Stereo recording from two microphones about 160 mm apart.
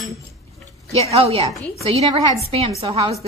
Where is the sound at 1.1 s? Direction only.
40° right (ahead or behind).